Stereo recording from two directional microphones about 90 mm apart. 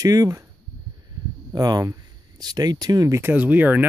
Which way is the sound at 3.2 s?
20° right (ahead or behind).